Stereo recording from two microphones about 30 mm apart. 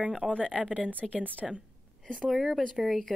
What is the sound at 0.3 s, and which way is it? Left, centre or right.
Speech, left.